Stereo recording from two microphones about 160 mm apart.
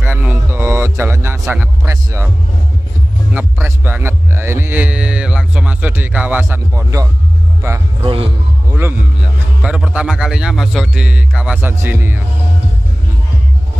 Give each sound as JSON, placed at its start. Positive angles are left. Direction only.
{"t": 0.0, "sound": "music", "side_deg": -10}
{"t": 1.4, "sound": "speech", "side_deg": -10}
{"t": 3.3, "sound": "music", "side_deg": -15}
{"t": 8.0, "sound": "a man's voice", "side_deg": -35}
{"t": 8.6, "sound": "music", "side_deg": -15}
{"t": 9.6, "sound": "a man's voice", "side_deg": -5}